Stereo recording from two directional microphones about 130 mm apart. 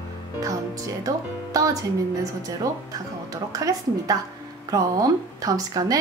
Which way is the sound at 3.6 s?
25° right (ahead or behind).